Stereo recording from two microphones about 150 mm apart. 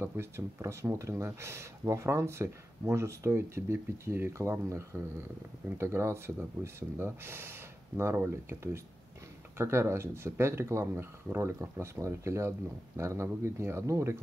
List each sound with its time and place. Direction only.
0.0 s speech: 20° right (ahead or behind)